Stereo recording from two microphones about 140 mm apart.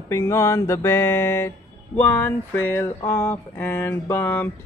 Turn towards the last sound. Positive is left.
turn(degrees=15)  # may be behind; listen again after turning